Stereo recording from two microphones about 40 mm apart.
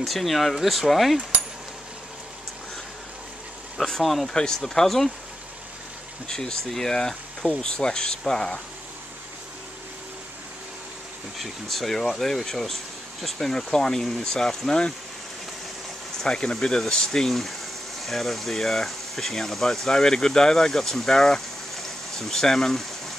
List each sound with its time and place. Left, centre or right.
0.0 s speech: centre
3.7 s speech: centre
4.3 s speech: centre
6.2 s speech: centre
11.3 s speech: centre
16.2 s speech: centre
17.3 s speech: centre